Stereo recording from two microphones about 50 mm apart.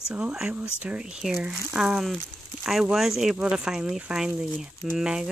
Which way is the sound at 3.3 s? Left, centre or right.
Right.